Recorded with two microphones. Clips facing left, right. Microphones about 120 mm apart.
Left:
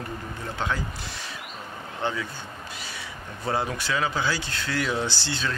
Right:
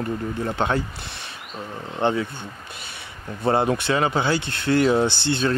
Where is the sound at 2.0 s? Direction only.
60° right (ahead or behind).